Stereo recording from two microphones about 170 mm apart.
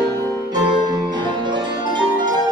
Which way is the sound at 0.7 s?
25° right (ahead or behind).